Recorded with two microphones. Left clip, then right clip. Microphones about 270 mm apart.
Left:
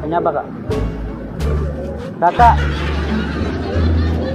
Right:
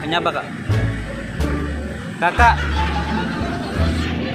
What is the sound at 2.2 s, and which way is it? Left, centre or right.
Speech, right.